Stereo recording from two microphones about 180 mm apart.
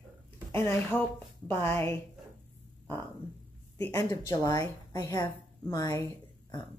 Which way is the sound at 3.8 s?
15° left (ahead or behind).